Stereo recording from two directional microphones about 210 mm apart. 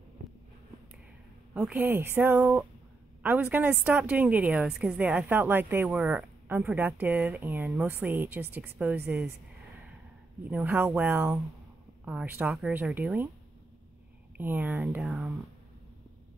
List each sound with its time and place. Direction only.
0.2 s a sound: 40° right (ahead or behind)
1.5 s a woman's voice: 10° right (ahead or behind)
10.4 s a woman's voice: 10° right (ahead or behind)
14.3 s speech: 10° right (ahead or behind)